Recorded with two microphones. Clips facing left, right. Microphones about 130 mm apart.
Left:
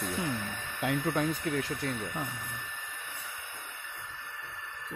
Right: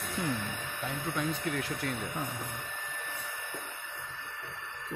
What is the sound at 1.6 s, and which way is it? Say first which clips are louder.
Speech: left 1 dB; 30° left (ahead or behind).